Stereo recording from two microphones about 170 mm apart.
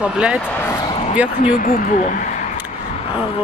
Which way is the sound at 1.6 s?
55° left (ahead or behind).